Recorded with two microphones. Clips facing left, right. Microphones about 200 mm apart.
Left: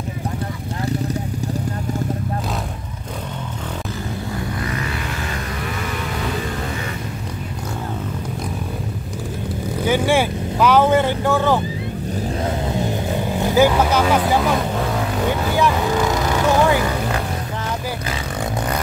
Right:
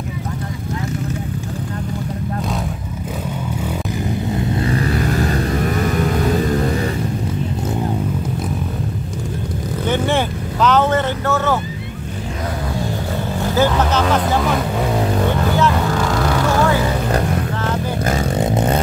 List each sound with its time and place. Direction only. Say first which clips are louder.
4.3 s vehicle: right 7 dB; 30° right (ahead or behind); by 6.4 s 45° right (ahead or behind)
9.8 s vehicle: left 1 dB; 10° left (ahead or behind)
12.7 s vehicle: left 1 dB; 15° left (ahead or behind)
15.5 s vehicle: right 1 dB; 15° left (ahead or behind)
18.4 s vehicle: right 5 dB; 25° right (ahead or behind)